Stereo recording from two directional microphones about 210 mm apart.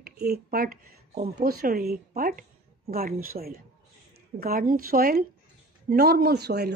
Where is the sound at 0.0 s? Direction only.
45° right (ahead or behind).